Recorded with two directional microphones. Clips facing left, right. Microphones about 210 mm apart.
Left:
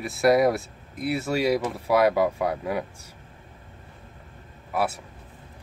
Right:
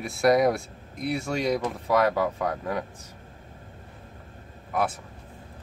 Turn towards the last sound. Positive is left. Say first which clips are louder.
# left 1 dB
turn(degrees=5)  # may be behind; listen again after turning